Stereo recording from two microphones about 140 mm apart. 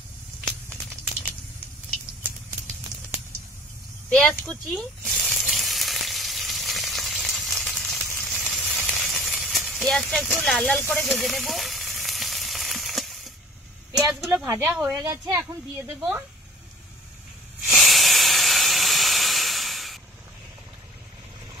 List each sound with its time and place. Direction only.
4.1 s water: 5° left (ahead or behind)
8.2 s sizzle: centre (ahead or behind)
11.1 s frying: centre (ahead or behind)
13.9 s speech: 5° right (ahead or behind)
14.9 s a woman's voice: 20° right (ahead or behind)
17.6 s hiss: centre (ahead or behind)